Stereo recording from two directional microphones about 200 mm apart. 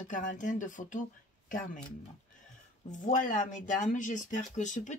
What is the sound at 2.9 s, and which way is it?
Speech, 40° left (ahead or behind).